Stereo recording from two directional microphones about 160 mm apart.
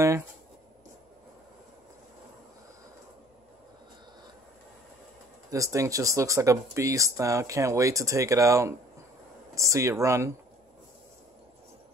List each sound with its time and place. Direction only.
5.5 s speech: 20° right (ahead or behind)